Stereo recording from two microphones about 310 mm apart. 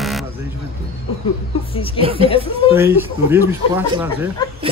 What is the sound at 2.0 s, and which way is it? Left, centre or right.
Speech, centre.